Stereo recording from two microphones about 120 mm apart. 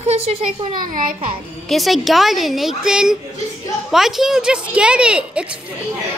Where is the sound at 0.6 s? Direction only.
45° right (ahead or behind).